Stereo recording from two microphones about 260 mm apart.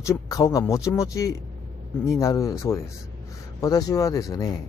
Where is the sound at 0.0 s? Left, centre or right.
Centre.